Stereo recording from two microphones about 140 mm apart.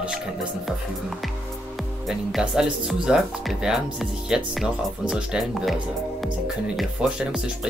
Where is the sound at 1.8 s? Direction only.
Centre (ahead or behind).